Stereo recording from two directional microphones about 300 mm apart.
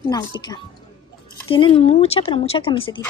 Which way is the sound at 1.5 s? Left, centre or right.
Centre.